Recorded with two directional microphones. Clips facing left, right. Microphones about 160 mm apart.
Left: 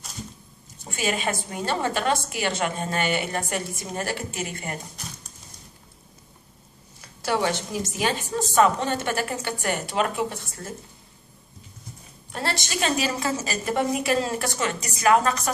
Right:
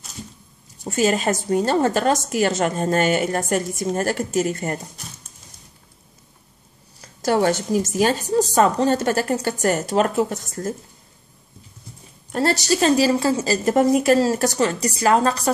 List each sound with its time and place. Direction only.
0.8 s a woman's voice: 40° right (ahead or behind)
7.0 s a woman's voice: 40° right (ahead or behind)
12.3 s a woman's voice: 40° right (ahead or behind)